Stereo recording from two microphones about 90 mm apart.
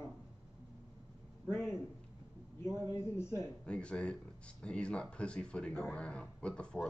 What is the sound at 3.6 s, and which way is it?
Speech, 10° left (ahead or behind).